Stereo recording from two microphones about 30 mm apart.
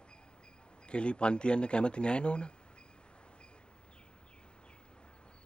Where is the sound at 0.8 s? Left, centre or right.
Left.